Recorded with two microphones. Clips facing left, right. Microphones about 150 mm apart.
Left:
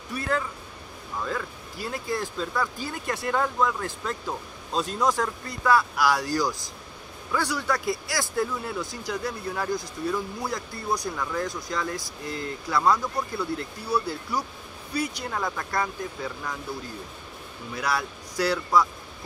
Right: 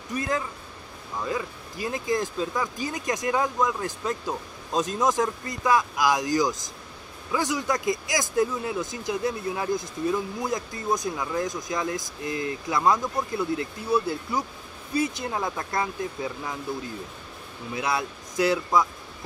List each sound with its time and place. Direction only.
0.1 s speech: 15° right (ahead or behind)
17.7 s speech: 20° right (ahead or behind)